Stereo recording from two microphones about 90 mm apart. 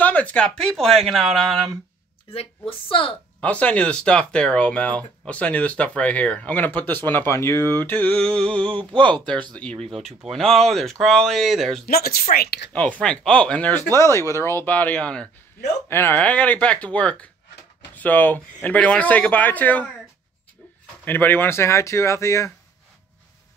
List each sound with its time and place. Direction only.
0.0 s speech: 15° left (ahead or behind)
2.2 s a woman's voice: 90° left
3.3 s speech: 15° left (ahead or behind)
8.6 s speech: 70° right (ahead or behind)
9.6 s speech: 10° left (ahead or behind)
9.8 s speech: centre (ahead or behind)
12.7 s speech: 15° left (ahead or behind)
13.9 s speech: 30° left (ahead or behind)
14.7 s speech: 20° left (ahead or behind)
15.9 s speech: 25° left (ahead or behind)
16.2 s speech: 15° left (ahead or behind)
21.0 s speech: 20° left (ahead or behind)